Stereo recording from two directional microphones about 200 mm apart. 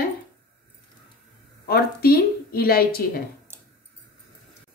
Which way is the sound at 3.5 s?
10° right (ahead or behind).